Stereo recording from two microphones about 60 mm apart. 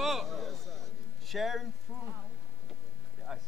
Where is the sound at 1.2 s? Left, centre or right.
Centre.